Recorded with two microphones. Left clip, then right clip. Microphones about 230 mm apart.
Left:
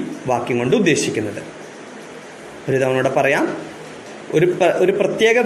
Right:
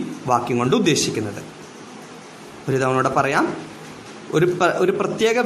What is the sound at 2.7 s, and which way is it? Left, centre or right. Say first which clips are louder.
A man's voice: left 2 dB; centre.